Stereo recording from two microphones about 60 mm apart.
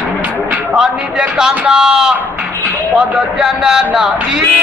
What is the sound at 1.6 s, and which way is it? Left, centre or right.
A man's voice, centre.